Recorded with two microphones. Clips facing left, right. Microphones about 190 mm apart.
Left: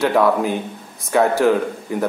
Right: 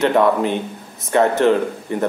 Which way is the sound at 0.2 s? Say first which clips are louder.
Right 1 dB; 5° left (ahead or behind).